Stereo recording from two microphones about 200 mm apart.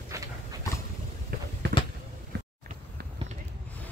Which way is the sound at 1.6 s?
60° right (ahead or behind).